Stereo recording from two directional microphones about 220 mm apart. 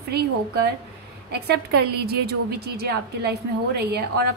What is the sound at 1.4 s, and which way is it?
A woman's voice, 45° right (ahead or behind).